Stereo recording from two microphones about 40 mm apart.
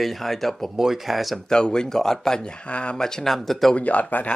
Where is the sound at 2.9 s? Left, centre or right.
Centre.